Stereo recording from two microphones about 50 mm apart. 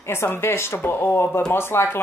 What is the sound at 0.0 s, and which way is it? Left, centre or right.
Speech, left.